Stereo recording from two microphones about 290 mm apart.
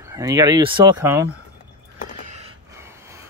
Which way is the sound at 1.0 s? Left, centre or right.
Centre.